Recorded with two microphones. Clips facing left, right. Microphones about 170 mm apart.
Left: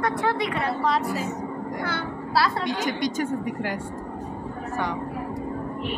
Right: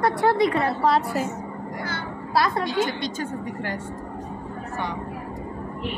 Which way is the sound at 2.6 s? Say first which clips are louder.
Right 1 dB; 15° left (ahead or behind).